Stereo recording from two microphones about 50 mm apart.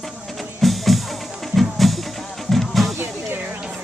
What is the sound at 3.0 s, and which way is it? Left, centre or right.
Music, right.